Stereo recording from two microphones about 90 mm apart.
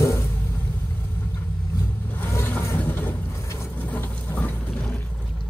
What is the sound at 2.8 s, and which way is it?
Boat, 20° left (ahead or behind).